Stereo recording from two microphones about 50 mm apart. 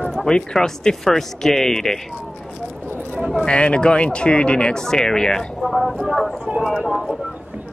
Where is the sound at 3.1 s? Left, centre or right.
Centre.